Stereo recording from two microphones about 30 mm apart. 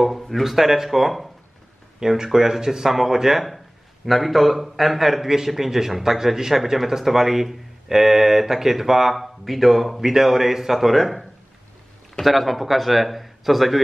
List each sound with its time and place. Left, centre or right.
0.3 s a man's voice: centre
2.0 s a man's voice: centre
12.2 s a man's voice: centre